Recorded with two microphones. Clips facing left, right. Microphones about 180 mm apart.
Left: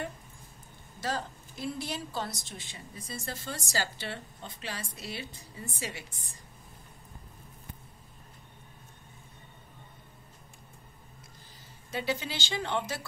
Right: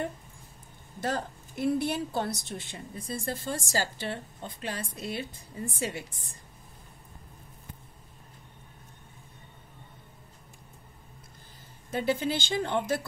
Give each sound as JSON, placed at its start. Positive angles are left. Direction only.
{"t": 1.0, "sound": "a woman's voice", "side_deg": -55}
{"t": 11.9, "sound": "a woman's voice", "side_deg": -50}